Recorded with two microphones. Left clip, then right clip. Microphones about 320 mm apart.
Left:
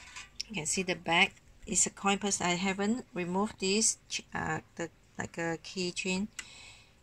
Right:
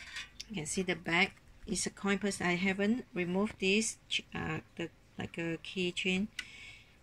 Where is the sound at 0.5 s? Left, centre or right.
Centre.